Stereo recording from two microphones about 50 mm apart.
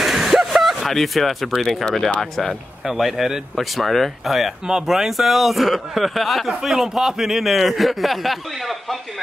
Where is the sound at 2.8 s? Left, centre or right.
Centre.